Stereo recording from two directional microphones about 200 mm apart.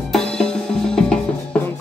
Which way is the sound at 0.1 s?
5° left (ahead or behind).